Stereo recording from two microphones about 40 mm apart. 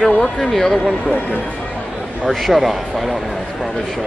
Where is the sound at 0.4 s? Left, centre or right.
Centre.